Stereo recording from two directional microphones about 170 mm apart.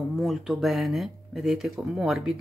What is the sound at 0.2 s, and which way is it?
A woman's voice, centre (ahead or behind).